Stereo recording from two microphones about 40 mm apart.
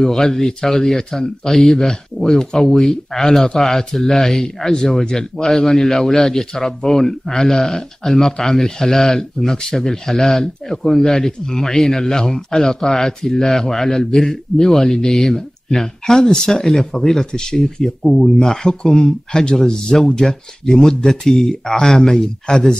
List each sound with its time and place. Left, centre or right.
0.0 s a man's voice: centre